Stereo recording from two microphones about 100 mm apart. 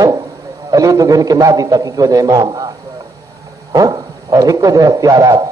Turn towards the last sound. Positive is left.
turn(degrees=-35)  # may be behind; listen again after turning